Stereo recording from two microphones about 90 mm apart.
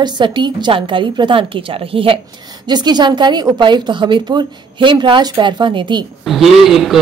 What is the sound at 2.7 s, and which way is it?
A woman's voice, 55° right (ahead or behind).